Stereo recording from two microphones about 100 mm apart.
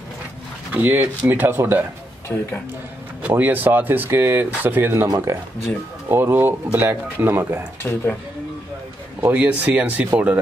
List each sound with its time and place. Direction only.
0.7 s speech: 15° right (ahead or behind)
2.2 s speech: 20° left (ahead or behind)
3.2 s speech: 15° right (ahead or behind)
5.0 s speech: 35° right (ahead or behind)
6.0 s speech: 20° right (ahead or behind)
7.8 s speech: 20° left (ahead or behind)
9.2 s speech: 15° right (ahead or behind)